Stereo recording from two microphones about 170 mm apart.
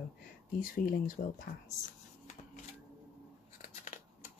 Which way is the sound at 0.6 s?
55° left (ahead or behind).